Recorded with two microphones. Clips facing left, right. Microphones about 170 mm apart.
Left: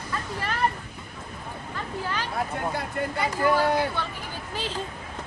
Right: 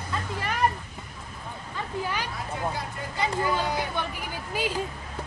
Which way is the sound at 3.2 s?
20° right (ahead or behind).